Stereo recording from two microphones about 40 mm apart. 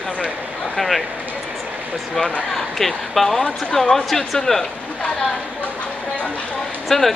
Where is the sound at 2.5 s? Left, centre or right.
Centre.